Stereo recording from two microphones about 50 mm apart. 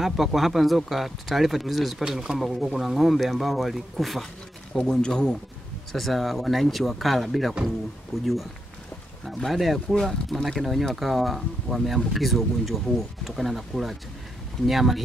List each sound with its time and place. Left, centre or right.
0.0 s speech: centre
4.9 s speech: centre
5.9 s speech: centre